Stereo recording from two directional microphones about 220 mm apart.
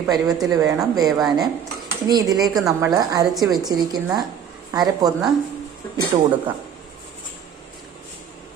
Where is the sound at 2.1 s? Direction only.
15° right (ahead or behind).